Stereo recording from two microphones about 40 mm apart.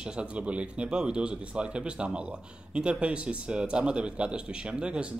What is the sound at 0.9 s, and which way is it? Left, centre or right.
Speech, right.